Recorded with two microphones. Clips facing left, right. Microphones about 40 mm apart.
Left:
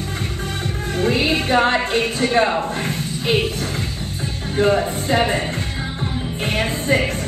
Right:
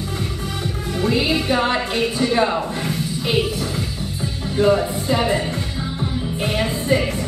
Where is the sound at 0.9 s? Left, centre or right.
Left.